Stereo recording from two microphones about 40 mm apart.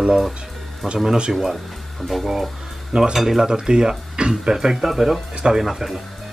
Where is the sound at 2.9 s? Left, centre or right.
Centre.